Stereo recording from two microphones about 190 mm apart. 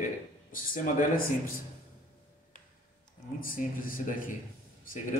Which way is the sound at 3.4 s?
45° left (ahead or behind).